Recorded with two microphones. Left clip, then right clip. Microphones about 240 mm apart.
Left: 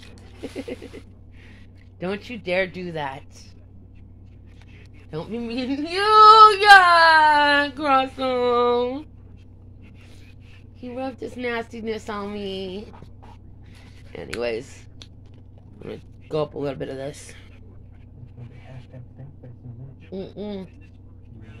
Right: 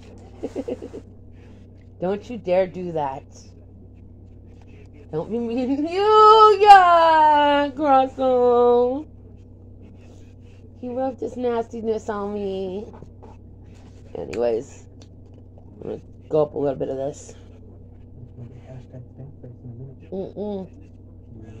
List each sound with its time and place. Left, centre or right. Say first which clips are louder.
0.0 s a sound: right 4 dB; left
2.0 s female singing: right 4 dB; left
5.1 s female singing: right 4 dB; left
10.8 s female singing: right 5 dB; left
14.1 s speech: right 4 dB; left
20.1 s female singing: right 4 dB; left